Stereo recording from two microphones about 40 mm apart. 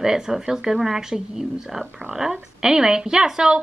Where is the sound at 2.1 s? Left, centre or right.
Centre.